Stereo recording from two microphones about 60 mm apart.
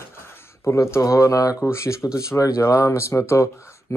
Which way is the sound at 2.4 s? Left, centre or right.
Left.